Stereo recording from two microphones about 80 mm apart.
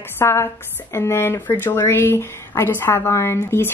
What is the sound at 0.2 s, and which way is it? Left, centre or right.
Speech, left.